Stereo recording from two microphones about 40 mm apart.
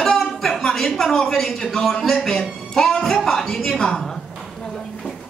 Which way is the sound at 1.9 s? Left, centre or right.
Centre.